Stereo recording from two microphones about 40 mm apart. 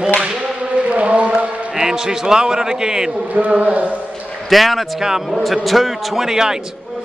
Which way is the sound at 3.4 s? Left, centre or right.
Right.